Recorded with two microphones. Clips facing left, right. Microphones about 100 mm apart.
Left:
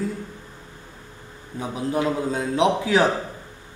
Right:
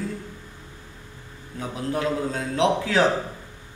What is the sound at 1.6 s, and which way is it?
A man's voice, 15° left (ahead or behind).